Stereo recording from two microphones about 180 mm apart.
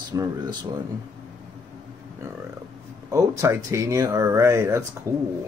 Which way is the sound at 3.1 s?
15° right (ahead or behind).